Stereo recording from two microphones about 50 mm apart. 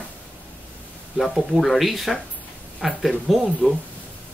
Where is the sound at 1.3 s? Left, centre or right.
Centre.